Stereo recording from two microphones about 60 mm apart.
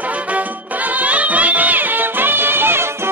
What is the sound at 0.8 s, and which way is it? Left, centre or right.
Music, right.